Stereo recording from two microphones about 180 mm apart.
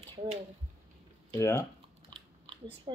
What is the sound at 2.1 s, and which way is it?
Chewing, 30° right (ahead or behind).